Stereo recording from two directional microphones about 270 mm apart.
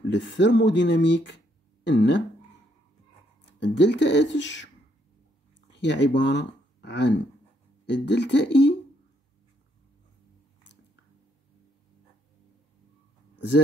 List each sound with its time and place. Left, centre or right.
0.1 s speech: left
3.5 s speech: left
5.7 s speech: left